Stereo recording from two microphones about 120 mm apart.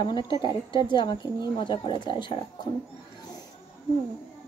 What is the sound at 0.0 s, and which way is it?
Speech, 40° left (ahead or behind).